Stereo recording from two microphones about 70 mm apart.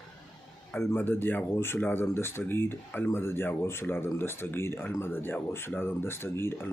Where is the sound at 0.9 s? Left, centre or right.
Left.